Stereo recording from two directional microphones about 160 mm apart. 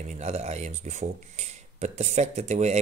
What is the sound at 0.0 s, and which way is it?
Speech, 45° right (ahead or behind).